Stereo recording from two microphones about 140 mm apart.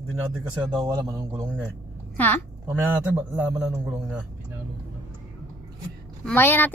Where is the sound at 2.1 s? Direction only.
15° left (ahead or behind).